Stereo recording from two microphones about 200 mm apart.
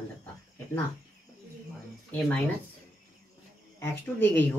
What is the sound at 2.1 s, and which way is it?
Speech, 5° left (ahead or behind).